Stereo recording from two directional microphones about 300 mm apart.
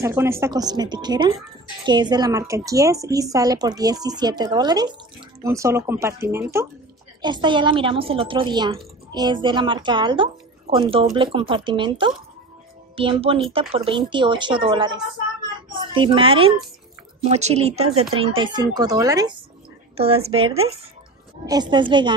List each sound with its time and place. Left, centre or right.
0.0 s a woman's voice: centre